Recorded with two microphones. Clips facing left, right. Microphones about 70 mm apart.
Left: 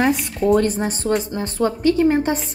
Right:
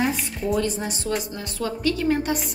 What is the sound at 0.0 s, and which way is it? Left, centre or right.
Speech, left.